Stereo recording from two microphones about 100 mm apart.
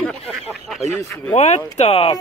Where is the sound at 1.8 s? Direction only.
90° left.